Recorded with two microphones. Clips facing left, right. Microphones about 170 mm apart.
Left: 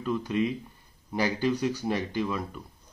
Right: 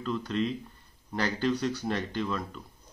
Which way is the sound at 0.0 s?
10° left (ahead or behind).